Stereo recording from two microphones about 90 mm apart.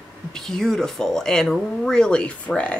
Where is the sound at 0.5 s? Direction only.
5° left (ahead or behind).